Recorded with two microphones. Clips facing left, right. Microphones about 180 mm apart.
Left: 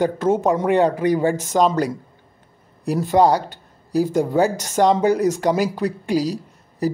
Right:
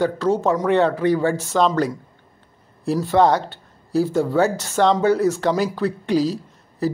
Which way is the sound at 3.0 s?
10° left (ahead or behind).